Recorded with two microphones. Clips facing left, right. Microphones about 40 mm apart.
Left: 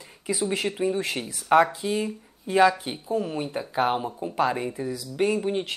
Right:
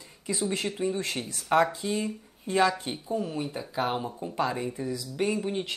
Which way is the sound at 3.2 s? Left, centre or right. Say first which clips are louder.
Left 6 dB; left.